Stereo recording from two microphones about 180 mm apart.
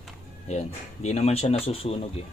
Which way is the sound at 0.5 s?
35° left (ahead or behind).